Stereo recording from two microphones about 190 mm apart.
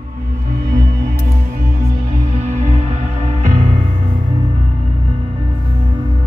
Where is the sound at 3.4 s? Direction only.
40° right (ahead or behind).